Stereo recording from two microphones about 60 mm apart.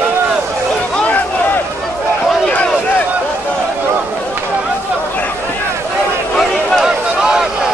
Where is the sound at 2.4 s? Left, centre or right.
Centre.